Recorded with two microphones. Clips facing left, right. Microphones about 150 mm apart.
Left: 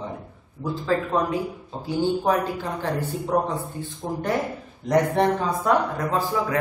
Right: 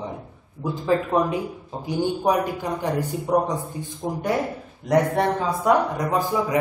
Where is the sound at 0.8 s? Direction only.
20° right (ahead or behind).